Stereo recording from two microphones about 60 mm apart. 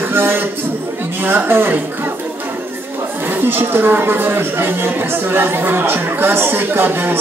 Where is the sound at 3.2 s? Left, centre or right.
Right.